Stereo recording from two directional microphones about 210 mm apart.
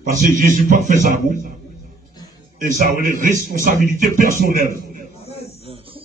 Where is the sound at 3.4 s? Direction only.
40° right (ahead or behind).